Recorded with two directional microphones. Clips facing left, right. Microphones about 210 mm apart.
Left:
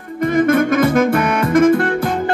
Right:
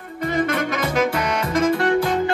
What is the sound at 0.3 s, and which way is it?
Music, 50° left (ahead or behind).